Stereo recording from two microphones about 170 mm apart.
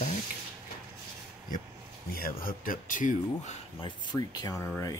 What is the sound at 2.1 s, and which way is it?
Speech, 55° left (ahead or behind).